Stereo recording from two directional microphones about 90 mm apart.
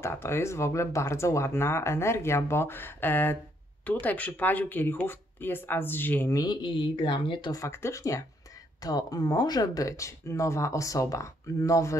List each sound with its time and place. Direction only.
0.0 s speech: 30° left (ahead or behind)
6.3 s speech: 50° left (ahead or behind); by 7.5 s 65° left (ahead or behind)
7.5 s speech: 35° left (ahead or behind)